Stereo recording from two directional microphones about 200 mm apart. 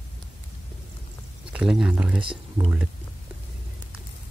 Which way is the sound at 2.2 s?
25° right (ahead or behind).